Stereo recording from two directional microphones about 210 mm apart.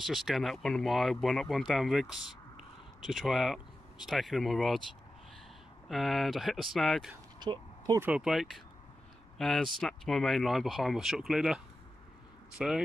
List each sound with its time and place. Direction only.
0.0 s speech: centre (ahead or behind)
5.9 s speech: centre (ahead or behind)
7.3 s a sound: 20° right (ahead or behind)
8.1 s speech: centre (ahead or behind)